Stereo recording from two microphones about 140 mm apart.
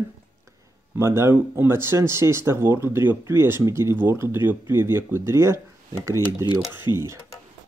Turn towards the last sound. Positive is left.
turn(degrees=30)  # may be behind; listen again after turning